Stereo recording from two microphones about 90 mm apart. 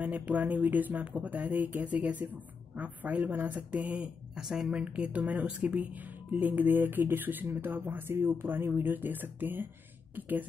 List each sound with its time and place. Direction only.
0.0 s speech: 20° right (ahead or behind)